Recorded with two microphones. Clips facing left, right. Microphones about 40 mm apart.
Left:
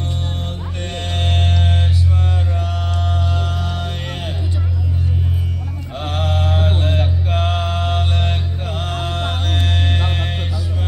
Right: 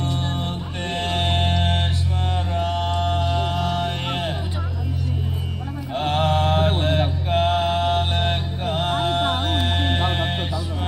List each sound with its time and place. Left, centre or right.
0.9 s music: centre
3.3 s music: centre
6.0 s mantra: centre